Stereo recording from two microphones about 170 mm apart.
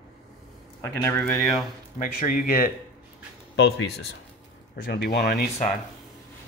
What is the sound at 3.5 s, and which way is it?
Speech, 75° left (ahead or behind).